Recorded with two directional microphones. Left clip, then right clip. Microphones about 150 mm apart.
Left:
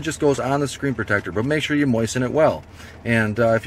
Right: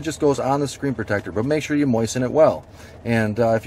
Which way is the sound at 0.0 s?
Centre (ahead or behind).